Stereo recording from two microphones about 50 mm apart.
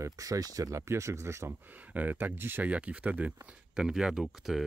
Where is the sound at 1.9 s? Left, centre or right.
Right.